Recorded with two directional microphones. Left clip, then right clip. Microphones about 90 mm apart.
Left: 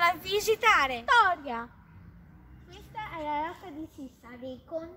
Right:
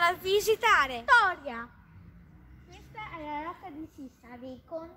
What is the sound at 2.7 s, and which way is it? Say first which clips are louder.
Children playing: left 3 dB; 45° left (ahead or behind).